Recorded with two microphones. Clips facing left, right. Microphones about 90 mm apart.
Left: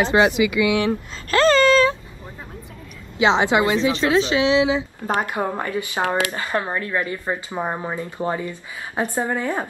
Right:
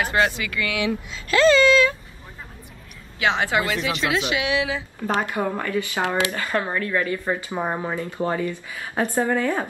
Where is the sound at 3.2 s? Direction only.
20° left (ahead or behind).